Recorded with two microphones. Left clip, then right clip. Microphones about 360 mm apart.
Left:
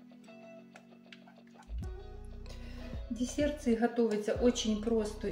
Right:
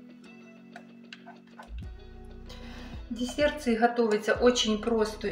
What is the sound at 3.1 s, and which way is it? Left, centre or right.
Speech, left.